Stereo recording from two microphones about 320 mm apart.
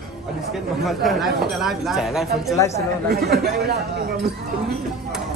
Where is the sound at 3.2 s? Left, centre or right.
Right.